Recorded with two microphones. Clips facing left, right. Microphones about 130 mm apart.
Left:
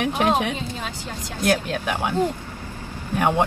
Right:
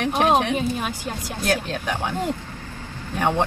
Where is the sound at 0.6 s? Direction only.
15° right (ahead or behind).